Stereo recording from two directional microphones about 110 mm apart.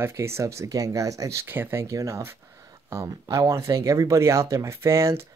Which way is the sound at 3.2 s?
40° right (ahead or behind).